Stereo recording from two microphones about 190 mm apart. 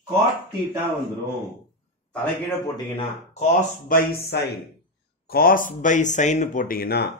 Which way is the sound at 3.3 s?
40° left (ahead or behind).